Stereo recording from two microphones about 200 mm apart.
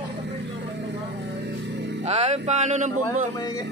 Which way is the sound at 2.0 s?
30° right (ahead or behind).